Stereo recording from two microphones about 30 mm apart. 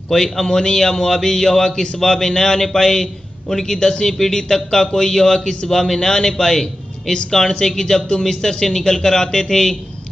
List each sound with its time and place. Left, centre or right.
0.1 s a man's voice: centre